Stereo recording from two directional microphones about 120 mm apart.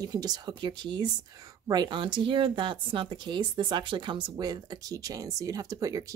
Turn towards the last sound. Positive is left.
turn(degrees=-30)  # may be behind; listen again after turning